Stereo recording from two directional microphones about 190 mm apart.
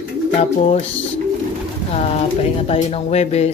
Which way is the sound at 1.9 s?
35° left (ahead or behind).